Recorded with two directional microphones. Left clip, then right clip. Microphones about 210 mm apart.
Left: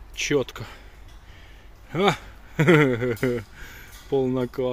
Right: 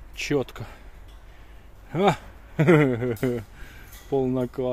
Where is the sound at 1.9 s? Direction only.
10° right (ahead or behind).